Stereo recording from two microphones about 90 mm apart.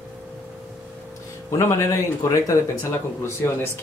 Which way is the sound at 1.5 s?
35° left (ahead or behind).